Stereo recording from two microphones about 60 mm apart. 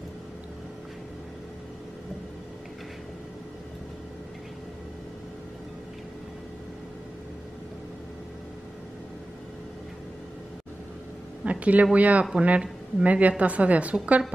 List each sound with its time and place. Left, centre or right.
11.4 s speech: right